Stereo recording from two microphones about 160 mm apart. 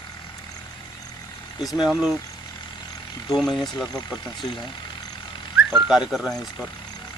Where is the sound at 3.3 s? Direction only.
Centre (ahead or behind).